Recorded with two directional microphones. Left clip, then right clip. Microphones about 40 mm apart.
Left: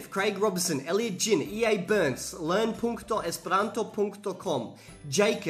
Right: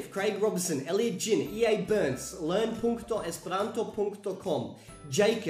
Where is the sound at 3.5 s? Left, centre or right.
Left.